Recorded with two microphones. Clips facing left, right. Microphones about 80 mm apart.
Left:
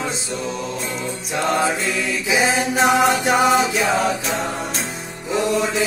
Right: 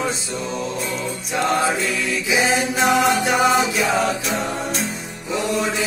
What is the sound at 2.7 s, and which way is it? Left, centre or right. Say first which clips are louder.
Music: left 2 dB; left.